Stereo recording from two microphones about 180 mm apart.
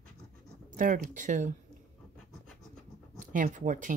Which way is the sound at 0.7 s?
45° right (ahead or behind).